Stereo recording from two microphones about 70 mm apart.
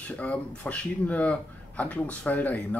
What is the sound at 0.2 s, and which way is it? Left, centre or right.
Speech, centre.